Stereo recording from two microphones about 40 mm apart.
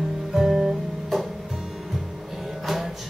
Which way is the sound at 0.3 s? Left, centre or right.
Centre.